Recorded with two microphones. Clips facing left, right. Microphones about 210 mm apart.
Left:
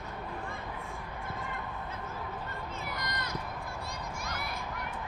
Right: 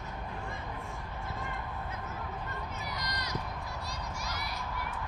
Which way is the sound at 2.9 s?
55° left (ahead or behind).